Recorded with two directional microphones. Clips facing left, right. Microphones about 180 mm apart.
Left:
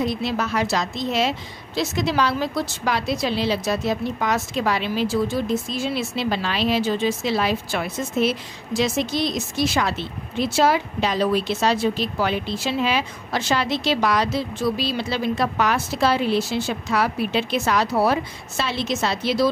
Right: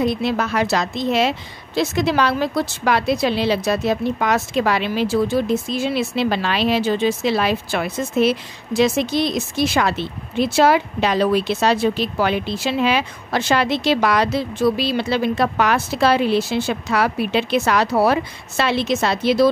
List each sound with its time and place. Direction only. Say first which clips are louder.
0.0 s a woman's voice: right 4 dB; 55° right (ahead or behind)